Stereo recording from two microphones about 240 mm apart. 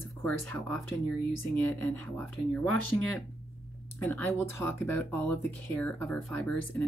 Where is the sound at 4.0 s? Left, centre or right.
Centre.